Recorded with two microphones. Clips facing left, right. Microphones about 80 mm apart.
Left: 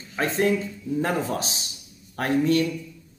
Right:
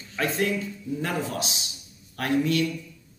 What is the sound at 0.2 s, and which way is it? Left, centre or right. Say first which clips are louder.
Speech: left 3 dB; left.